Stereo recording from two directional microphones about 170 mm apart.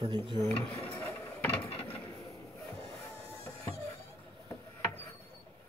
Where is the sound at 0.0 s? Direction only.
25° right (ahead or behind).